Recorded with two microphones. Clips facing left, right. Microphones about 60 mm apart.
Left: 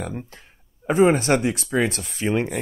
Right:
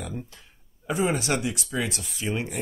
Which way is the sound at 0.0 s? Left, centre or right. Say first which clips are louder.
Left 4 dB; left.